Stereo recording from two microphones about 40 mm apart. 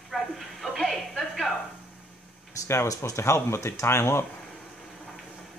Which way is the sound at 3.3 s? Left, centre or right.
Left.